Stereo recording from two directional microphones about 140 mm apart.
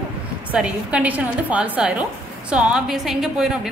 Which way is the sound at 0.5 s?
10° right (ahead or behind).